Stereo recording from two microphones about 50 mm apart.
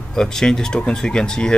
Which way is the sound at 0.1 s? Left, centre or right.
Centre.